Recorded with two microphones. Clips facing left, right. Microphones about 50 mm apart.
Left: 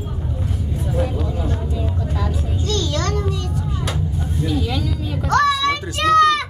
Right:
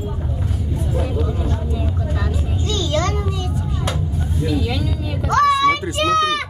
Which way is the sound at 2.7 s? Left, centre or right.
Right.